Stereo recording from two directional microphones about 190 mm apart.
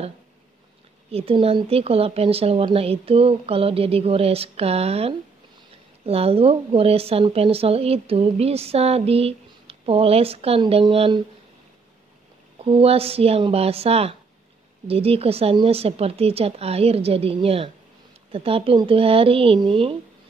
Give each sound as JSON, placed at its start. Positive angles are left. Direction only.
{"t": 1.1, "sound": "speech", "side_deg": -30}
{"t": 12.6, "sound": "speech", "side_deg": -30}